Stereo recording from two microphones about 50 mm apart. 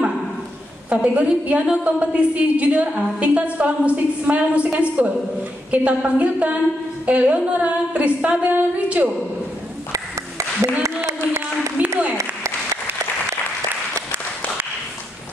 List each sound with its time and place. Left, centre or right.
0.8 s a woman's voice: right
9.9 s clapping: right
11.8 s a sound: right